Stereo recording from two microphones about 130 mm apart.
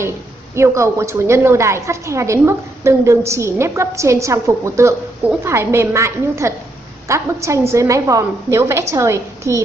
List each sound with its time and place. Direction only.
0.6 s a woman's voice: 20° right (ahead or behind)